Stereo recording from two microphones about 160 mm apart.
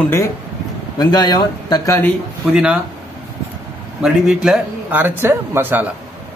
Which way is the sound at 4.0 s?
5° right (ahead or behind).